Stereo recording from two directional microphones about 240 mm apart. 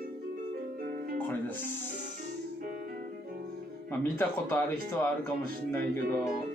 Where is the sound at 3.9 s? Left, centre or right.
Centre.